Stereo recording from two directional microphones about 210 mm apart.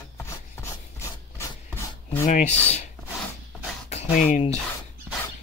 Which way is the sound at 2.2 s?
35° left (ahead or behind).